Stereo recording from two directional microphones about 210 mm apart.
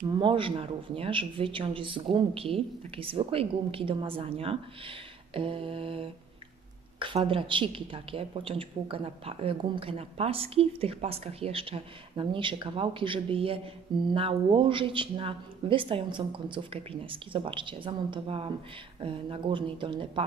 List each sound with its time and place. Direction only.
0.1 s a woman's voice: 25° right (ahead or behind)